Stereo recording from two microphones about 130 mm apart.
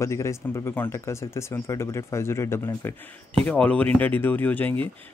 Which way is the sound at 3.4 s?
10° left (ahead or behind).